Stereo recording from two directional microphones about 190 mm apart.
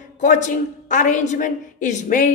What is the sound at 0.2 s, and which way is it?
A woman's voice, 40° left (ahead or behind).